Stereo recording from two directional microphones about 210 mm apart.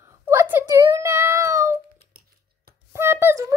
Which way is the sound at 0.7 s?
15° right (ahead or behind).